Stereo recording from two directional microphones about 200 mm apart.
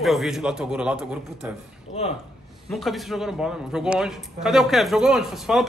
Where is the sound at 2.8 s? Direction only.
Centre (ahead or behind).